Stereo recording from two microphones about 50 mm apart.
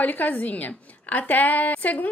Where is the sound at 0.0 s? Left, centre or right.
Left.